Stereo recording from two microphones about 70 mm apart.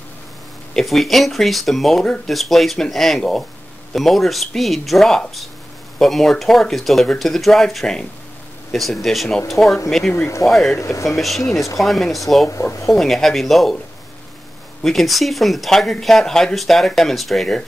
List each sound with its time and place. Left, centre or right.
0.7 s speech: centre
10.1 s speech: left
10.5 s speech: centre
10.8 s speech: left
11.1 s speech: centre
11.4 s speech: left
11.8 s speech: centre
12.6 s speech: left
12.9 s speech: centre
14.8 s speech: centre